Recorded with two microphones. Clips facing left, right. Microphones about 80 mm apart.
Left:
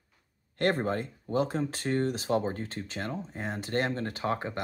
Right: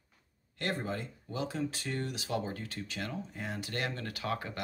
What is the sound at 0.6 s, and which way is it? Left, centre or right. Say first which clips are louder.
Speech: left 8 dB; left.